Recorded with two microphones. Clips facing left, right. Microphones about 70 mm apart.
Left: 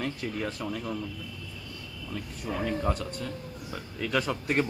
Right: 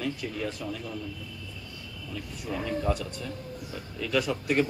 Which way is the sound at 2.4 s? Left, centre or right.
Left.